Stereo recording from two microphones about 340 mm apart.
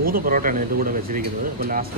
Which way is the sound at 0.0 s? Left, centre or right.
Right.